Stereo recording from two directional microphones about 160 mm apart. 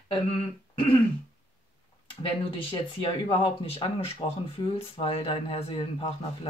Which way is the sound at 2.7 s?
35° left (ahead or behind).